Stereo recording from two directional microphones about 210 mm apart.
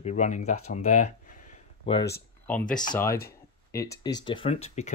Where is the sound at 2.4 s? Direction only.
5° left (ahead or behind).